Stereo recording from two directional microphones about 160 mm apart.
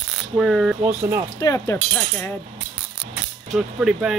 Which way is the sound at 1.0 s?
15° right (ahead or behind).